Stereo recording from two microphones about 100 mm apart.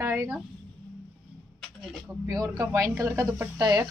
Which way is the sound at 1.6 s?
Centre (ahead or behind).